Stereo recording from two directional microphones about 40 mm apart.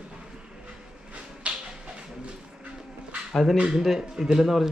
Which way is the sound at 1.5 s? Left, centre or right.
Right.